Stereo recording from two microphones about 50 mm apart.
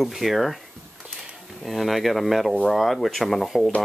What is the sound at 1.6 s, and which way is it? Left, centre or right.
Speech, centre.